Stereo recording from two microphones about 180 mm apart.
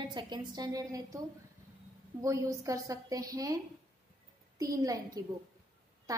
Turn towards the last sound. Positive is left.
turn(degrees=-20)  # may be behind; listen again after turning